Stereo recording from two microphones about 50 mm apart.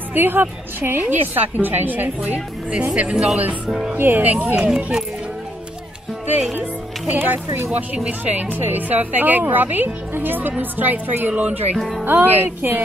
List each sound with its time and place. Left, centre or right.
0.1 s a woman's voice: right
3.9 s a woman's voice: right
4.6 s a child's voice: centre
6.5 s a woman's voice: right